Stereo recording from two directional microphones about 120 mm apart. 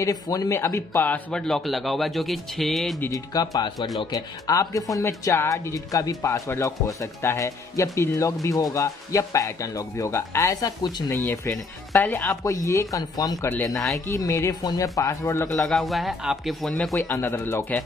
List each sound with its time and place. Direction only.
0.0 s speech: 30° left (ahead or behind); by 3.0 s centre (ahead or behind)
3.1 s speech: 30° left (ahead or behind)
11.1 s speech: 20° left (ahead or behind)
15.6 s speech: centre (ahead or behind)
17.0 s speech: 20° left (ahead or behind)